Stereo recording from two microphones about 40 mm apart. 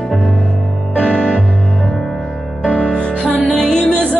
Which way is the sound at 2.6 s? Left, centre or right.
Left.